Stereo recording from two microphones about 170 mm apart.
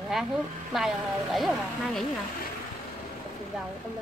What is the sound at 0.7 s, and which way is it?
Speech, centre (ahead or behind).